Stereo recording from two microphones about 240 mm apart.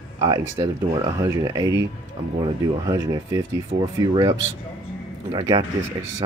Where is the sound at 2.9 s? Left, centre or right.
Centre.